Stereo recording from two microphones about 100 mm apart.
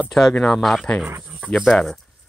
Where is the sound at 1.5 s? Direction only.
Centre (ahead or behind).